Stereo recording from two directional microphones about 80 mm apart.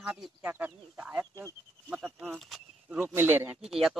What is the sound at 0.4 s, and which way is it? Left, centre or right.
Speech, right.